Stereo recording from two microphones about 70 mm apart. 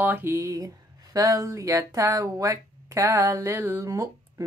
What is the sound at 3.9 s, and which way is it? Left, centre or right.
Speech, right.